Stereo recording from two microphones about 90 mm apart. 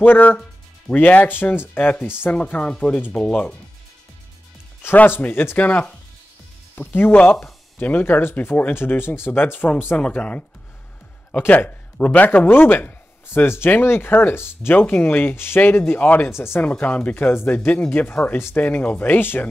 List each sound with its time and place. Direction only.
0.0 s speech: 20° left (ahead or behind)
4.8 s speech: 25° left (ahead or behind)
16.7 s speech: 15° left (ahead or behind)